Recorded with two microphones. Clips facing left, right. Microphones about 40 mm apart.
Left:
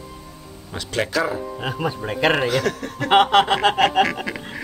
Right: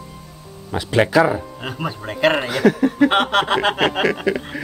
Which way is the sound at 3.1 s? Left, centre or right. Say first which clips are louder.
Left 2 dB; centre.